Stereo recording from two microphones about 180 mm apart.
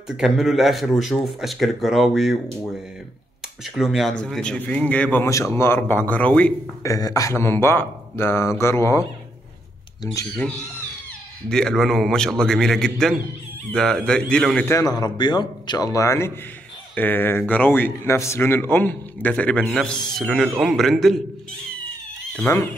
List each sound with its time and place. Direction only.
0.2 s speech: centre (ahead or behind)
3.7 s speech: centre (ahead or behind)
6.9 s speech: 20° left (ahead or behind)
10.2 s speech: 5° left (ahead or behind)
14.7 s a man's voice: 20° left (ahead or behind); by 21.2 s centre (ahead or behind)
22.4 s speech: 15° left (ahead or behind)